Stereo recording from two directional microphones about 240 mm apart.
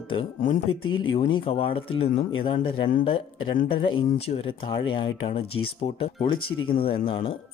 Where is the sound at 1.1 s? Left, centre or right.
Left.